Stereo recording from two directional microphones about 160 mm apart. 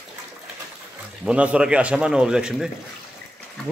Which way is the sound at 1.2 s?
5° right (ahead or behind).